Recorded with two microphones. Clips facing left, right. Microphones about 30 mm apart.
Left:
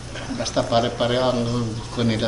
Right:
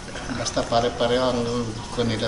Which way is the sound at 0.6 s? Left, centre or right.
Centre.